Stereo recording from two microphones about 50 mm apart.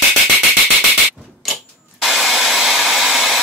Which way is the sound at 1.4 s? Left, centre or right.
Centre.